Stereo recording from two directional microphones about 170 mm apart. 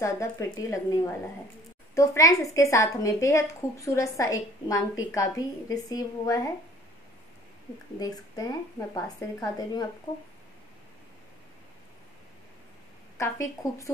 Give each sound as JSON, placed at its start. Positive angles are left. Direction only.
{"t": 0.0, "sound": "a woman's voice", "side_deg": 20}
{"t": 8.0, "sound": "a woman's voice", "side_deg": 20}
{"t": 13.2, "sound": "speech", "side_deg": 15}